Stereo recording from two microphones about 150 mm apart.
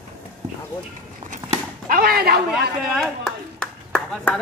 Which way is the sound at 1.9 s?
70° right (ahead or behind).